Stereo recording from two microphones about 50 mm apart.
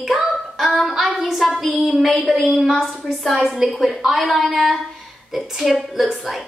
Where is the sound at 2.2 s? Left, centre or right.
Right.